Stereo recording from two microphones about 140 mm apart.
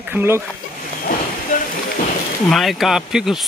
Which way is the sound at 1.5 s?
65° left (ahead or behind).